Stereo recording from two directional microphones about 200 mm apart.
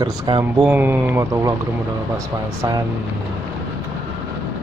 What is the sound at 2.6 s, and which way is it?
Speech, 20° right (ahead or behind).